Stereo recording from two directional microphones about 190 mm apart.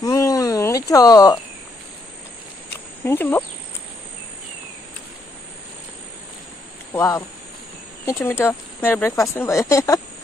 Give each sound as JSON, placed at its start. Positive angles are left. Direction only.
{"t": 0.0, "sound": "a sound", "side_deg": 20}
{"t": 3.1, "sound": "speech", "side_deg": 10}
{"t": 6.9, "sound": "speech", "side_deg": 15}